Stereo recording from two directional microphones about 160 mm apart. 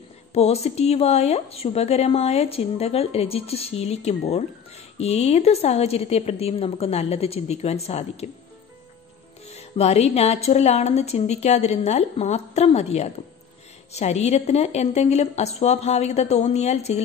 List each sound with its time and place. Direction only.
0.3 s a woman's voice: 40° left (ahead or behind)
9.6 s a woman's voice: 40° left (ahead or behind)